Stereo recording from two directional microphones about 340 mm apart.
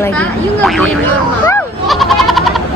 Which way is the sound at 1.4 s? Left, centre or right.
Centre.